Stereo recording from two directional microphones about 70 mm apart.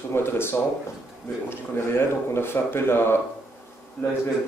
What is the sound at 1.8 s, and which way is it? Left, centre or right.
Speech, left.